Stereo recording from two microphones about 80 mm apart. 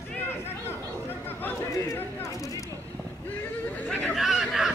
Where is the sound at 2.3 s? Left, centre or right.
Left.